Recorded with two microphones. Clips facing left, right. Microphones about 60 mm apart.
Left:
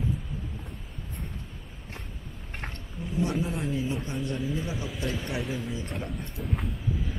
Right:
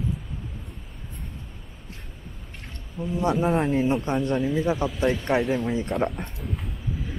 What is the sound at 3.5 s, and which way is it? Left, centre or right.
Speech, right.